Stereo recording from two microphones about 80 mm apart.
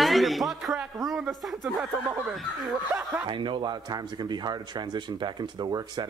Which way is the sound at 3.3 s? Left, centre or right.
Right.